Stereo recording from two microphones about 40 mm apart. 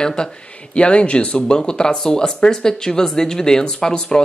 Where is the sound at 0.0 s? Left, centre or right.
Centre.